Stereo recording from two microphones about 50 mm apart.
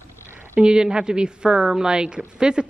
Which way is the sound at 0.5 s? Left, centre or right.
Centre.